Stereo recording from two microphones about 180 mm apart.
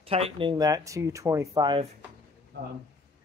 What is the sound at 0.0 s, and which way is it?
Speech, 30° right (ahead or behind).